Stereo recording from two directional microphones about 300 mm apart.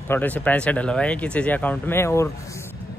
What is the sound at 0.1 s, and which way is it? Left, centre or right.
Speech, centre.